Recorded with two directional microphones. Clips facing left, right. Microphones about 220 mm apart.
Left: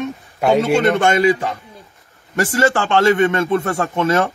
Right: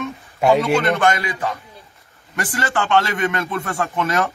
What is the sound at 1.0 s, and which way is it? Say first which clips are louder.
Speech: left 5 dB; 25° left (ahead or behind).